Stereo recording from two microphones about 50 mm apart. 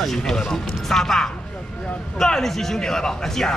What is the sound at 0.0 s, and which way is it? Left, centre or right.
Speech, centre.